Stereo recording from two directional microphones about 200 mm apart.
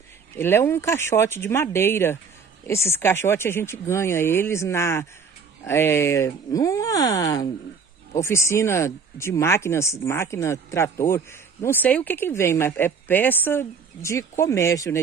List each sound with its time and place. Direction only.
0.4 s speech: 10° left (ahead or behind)